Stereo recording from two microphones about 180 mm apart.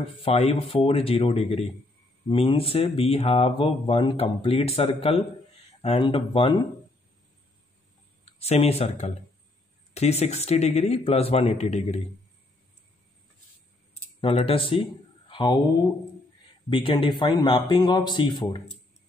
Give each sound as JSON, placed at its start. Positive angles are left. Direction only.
{"t": 0.2, "sound": "speech", "side_deg": 35}
{"t": 8.3, "sound": "speech", "side_deg": 35}
{"t": 14.2, "sound": "speech", "side_deg": 30}
{"t": 16.6, "sound": "speech", "side_deg": 25}